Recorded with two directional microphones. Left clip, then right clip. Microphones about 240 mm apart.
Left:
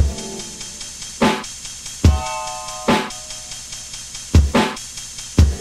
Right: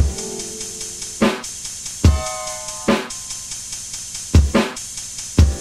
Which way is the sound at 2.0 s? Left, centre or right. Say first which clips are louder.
Even; centre.